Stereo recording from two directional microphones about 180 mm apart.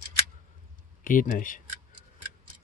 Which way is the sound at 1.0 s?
50° left (ahead or behind).